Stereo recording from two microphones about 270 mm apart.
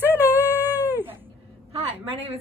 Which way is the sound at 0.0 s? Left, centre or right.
Centre.